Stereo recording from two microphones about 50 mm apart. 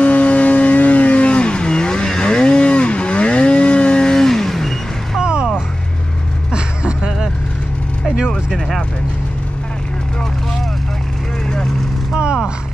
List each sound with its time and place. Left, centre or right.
0.0 s vehicle: left; by 5.2 s centre
5.2 s music: centre
6.5 s vehicle: centre
8.5 s vehicle: centre
12.1 s vehicle: centre